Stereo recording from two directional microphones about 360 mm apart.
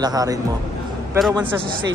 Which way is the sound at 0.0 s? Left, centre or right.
Centre.